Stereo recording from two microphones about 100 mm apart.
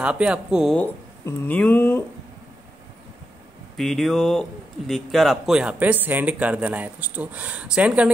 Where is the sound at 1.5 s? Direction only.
15° left (ahead or behind).